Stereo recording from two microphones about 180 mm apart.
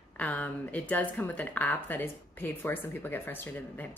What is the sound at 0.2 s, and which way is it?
A woman's voice, 5° left (ahead or behind).